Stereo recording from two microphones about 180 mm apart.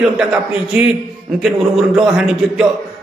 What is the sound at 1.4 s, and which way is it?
A man's voice, 5° right (ahead or behind).